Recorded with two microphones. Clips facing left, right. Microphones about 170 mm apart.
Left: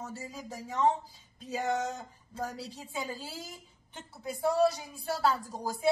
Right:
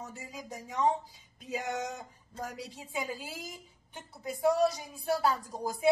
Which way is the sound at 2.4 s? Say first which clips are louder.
Left 2 dB; 15° right (ahead or behind).